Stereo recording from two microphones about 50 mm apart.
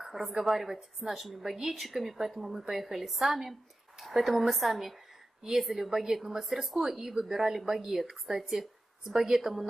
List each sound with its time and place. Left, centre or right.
0.0 s a sound: centre
0.5 s a woman's voice: centre
6.8 s a woman's voice: centre